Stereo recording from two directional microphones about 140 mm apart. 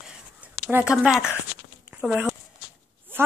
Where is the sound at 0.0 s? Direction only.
10° right (ahead or behind).